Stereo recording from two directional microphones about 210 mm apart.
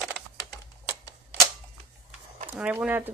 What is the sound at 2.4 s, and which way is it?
Speech, 5° right (ahead or behind).